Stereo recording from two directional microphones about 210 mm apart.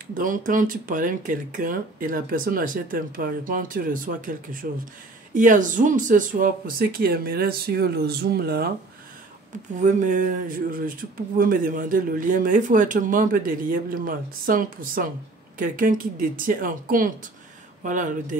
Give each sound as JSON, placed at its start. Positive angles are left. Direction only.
{"t": 0.2, "sound": "speech", "side_deg": -40}
{"t": 9.8, "sound": "speech", "side_deg": -35}